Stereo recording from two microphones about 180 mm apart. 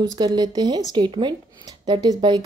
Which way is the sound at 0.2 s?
25° right (ahead or behind).